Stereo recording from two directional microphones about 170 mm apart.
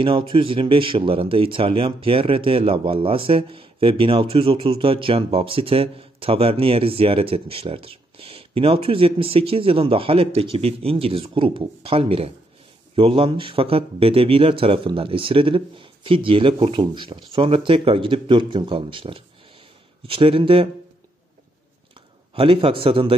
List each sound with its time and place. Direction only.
0.0 s speech: 30° right (ahead or behind)
22.3 s speech: 35° right (ahead or behind)